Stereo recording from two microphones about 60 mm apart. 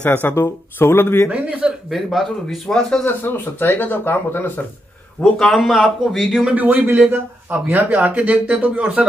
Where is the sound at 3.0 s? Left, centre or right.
Left.